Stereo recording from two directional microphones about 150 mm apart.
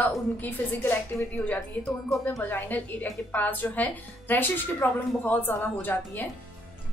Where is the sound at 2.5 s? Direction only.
10° left (ahead or behind).